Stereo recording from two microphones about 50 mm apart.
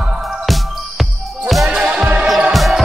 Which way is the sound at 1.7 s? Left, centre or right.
Centre.